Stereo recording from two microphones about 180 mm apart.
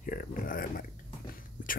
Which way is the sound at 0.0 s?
50° left (ahead or behind).